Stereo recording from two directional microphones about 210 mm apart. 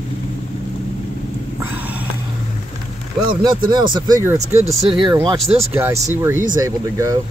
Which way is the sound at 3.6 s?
20° right (ahead or behind).